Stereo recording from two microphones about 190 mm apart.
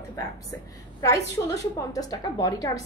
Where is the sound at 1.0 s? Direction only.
15° left (ahead or behind).